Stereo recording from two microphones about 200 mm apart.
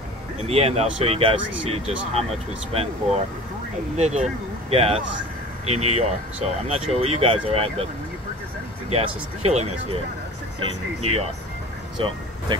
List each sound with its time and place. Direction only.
0.5 s speech: 30° right (ahead or behind)
8.9 s speech: 30° right (ahead or behind)
11.0 s speech: 30° right (ahead or behind)